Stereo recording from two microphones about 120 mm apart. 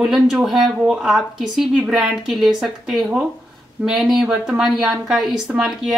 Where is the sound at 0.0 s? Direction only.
5° right (ahead or behind).